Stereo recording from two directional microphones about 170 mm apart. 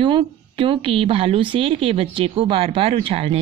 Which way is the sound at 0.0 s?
30° right (ahead or behind).